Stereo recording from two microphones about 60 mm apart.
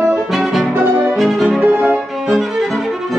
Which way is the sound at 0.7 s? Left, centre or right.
Right.